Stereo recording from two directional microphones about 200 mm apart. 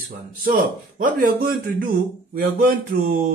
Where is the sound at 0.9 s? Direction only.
45° right (ahead or behind).